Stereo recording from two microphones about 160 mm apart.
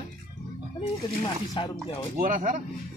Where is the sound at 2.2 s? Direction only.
55° right (ahead or behind).